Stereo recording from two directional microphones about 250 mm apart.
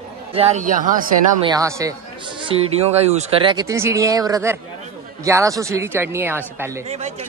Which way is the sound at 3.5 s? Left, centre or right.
Centre.